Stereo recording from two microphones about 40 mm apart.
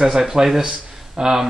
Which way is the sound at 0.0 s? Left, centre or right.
Centre.